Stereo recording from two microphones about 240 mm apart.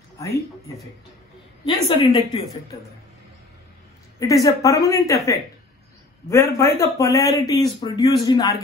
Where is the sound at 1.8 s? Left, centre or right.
Left.